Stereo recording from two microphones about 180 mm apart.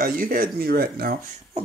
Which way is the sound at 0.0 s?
55° right (ahead or behind).